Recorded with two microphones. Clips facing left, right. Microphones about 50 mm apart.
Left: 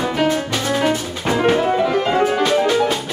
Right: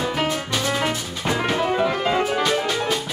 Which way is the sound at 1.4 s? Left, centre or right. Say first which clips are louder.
Left 5 dB; centre.